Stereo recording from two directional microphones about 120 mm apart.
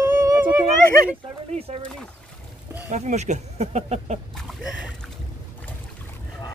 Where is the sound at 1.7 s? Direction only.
60° right (ahead or behind).